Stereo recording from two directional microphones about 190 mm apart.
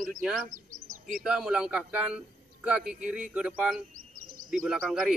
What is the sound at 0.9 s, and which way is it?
Bird, 45° right (ahead or behind).